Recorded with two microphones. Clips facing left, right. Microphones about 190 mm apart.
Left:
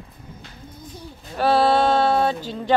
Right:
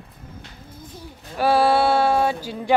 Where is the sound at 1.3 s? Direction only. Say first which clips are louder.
Even; 10° right (ahead or behind).